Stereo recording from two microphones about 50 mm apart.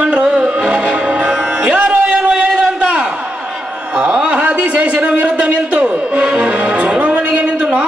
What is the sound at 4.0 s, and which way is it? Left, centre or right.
A man's voice, right.